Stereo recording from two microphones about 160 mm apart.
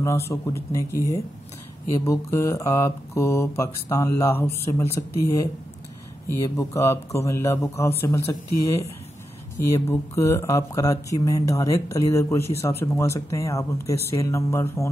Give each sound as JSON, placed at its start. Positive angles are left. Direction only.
{"t": 0.0, "sound": "speech", "side_deg": 20}
{"t": 6.2, "sound": "speech", "side_deg": 15}